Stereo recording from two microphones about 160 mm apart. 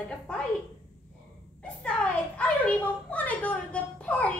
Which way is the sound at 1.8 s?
5° left (ahead or behind).